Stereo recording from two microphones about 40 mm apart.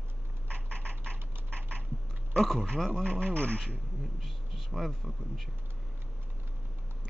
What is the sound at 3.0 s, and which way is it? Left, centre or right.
Speech, left.